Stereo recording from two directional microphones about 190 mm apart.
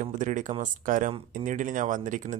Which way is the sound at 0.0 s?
40° right (ahead or behind).